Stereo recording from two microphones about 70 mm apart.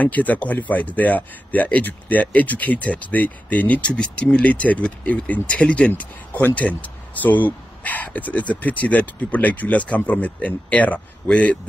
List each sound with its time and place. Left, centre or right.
0.0 s speech: left